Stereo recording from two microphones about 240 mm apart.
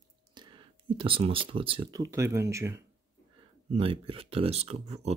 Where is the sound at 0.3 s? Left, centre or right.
Centre.